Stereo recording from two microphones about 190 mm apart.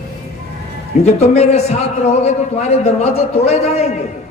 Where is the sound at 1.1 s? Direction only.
35° left (ahead or behind).